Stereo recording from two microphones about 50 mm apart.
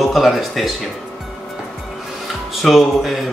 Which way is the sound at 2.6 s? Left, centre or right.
Centre.